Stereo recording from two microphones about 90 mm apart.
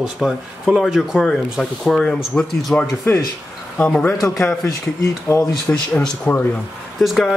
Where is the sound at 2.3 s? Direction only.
15° left (ahead or behind).